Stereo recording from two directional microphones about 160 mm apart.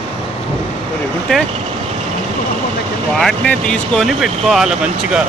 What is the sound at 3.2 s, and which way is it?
Speech, 5° left (ahead or behind).